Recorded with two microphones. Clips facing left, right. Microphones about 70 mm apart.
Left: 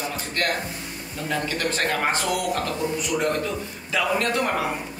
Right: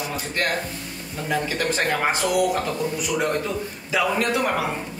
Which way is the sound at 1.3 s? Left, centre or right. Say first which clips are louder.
Right 2 dB; centre.